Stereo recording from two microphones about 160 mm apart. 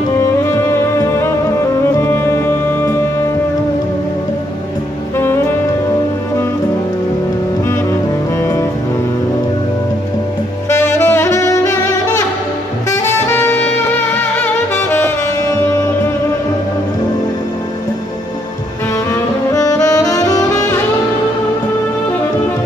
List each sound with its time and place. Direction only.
1.8 s music: 15° left (ahead or behind)
5.1 s saxophone: 15° left (ahead or behind)
10.7 s saxophone: 15° left (ahead or behind)
19.5 s saxophone: 20° left (ahead or behind)